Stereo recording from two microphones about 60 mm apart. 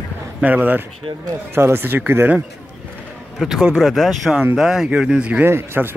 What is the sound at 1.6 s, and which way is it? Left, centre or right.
Speech, right.